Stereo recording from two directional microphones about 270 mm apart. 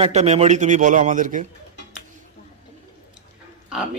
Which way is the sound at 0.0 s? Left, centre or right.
Right.